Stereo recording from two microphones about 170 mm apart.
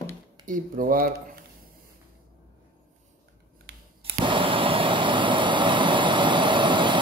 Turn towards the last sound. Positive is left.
turn(degrees=-30)  # may be behind; listen again after turning